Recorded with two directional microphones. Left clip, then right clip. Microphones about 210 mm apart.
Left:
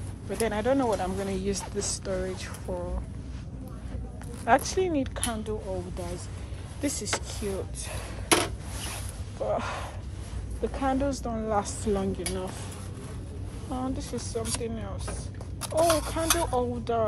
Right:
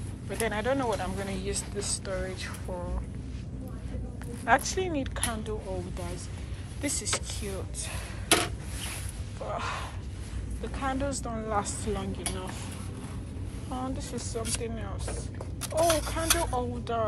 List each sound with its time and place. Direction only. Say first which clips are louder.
0.3 s speech: left 3 dB; 25° left (ahead or behind)
4.5 s speech: left 2 dB; 30° left (ahead or behind)
6.8 s speech: left 1 dB; 25° left (ahead or behind)
9.4 s speech: left 4 dB; 30° left (ahead or behind)
13.7 s speech: left 2 dB; 20° left (ahead or behind)
15.6 s speech: left 2 dB; 40° left (ahead or behind)
16.3 s speech: left 3 dB; 25° left (ahead or behind)